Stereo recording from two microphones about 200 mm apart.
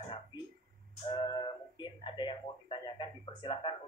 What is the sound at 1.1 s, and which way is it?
Speech, 25° left (ahead or behind).